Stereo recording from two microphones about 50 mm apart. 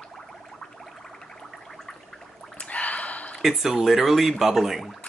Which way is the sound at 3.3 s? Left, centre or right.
Centre.